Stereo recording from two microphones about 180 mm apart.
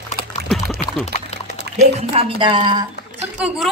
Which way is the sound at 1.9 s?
30° right (ahead or behind).